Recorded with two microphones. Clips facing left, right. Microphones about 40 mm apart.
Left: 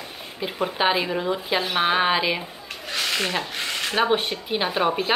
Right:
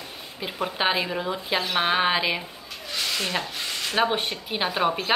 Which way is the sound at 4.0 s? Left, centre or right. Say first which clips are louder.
Left 2 dB; centre.